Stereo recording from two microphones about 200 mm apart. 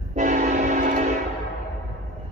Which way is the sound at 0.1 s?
40° right (ahead or behind).